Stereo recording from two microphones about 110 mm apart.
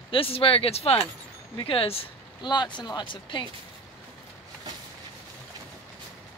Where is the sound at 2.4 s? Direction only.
45° left (ahead or behind).